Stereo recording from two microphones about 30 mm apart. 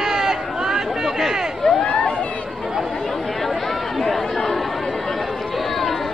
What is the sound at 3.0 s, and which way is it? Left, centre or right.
Chatter, centre.